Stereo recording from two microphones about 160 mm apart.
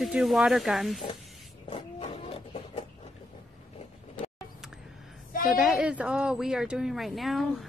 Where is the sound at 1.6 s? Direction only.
35° left (ahead or behind).